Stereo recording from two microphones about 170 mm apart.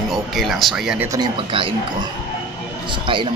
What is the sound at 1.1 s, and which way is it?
Speech, 25° right (ahead or behind).